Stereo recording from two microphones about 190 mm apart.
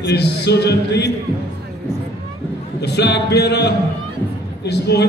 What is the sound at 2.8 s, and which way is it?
A man's voice, 60° left (ahead or behind).